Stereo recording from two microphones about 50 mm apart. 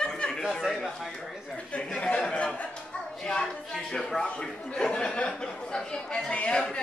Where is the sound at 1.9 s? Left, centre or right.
Left.